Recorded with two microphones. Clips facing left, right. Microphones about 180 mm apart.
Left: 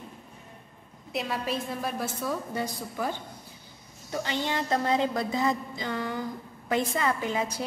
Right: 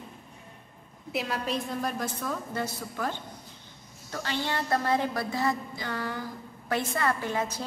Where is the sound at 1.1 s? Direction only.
Centre (ahead or behind).